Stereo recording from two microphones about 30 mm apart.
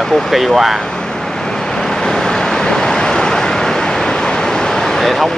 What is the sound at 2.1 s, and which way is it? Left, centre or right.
Vehicle, left.